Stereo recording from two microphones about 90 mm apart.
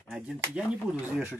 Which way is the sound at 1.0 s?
20° right (ahead or behind).